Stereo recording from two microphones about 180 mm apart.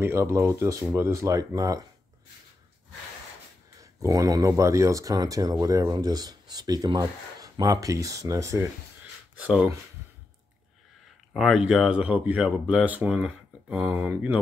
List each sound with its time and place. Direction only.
0.0 s speech: 15° right (ahead or behind)
3.8 s speech: 20° right (ahead or behind)
11.3 s speech: 5° right (ahead or behind)